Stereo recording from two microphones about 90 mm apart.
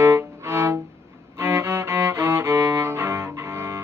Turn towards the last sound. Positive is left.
turn(degrees=-30)  # may be behind; listen again after turning